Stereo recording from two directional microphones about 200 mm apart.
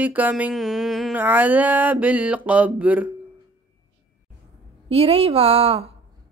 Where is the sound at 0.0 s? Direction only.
5° right (ahead or behind).